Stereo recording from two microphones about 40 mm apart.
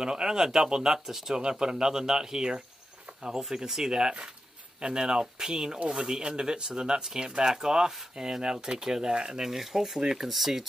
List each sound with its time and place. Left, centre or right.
0.0 s speech: centre
9.4 s speech: centre
9.9 s speech: centre
10.2 s speech: centre